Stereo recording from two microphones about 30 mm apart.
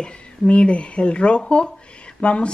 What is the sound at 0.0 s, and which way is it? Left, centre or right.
Speech, left.